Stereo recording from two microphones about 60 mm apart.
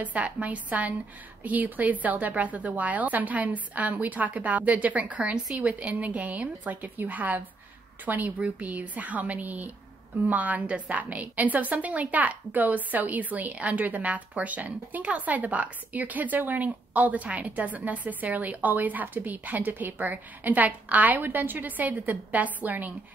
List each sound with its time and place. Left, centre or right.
0.0 s a woman's voice: right